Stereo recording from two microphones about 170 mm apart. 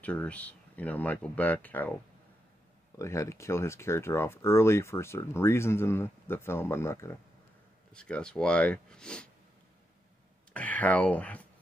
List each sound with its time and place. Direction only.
0.0 s speech: 10° left (ahead or behind)
3.0 s speech: 15° left (ahead or behind)
7.9 s speech: 5° left (ahead or behind)
10.5 s speech: 10° left (ahead or behind)